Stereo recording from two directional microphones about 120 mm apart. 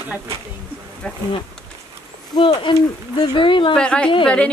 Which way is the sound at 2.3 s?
40° left (ahead or behind).